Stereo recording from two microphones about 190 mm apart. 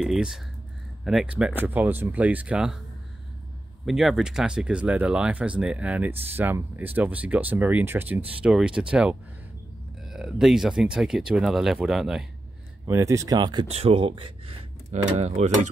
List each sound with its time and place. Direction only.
0.0 s speech: centre (ahead or behind)
3.8 s speech: centre (ahead or behind)
12.8 s speech: 15° right (ahead or behind); by 15.7 s 35° right (ahead or behind)